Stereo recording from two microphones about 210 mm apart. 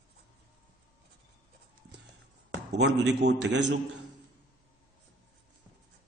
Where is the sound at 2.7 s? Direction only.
55° right (ahead or behind).